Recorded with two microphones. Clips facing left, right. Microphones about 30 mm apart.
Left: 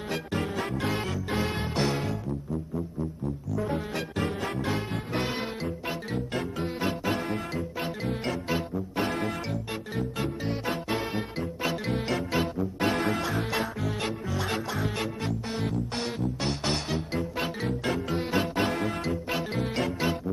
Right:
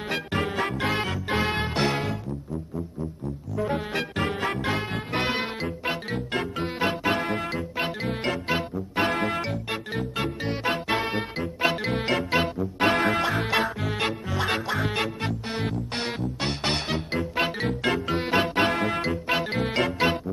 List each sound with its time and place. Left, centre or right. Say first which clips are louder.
0.1 s music: right 3 dB; right
3.5 s music: right 5 dB; right
9.5 s music: right 3 dB; right